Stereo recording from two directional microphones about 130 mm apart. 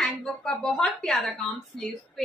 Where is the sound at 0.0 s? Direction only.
5° left (ahead or behind).